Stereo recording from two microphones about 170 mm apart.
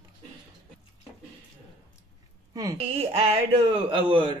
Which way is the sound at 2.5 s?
20° right (ahead or behind).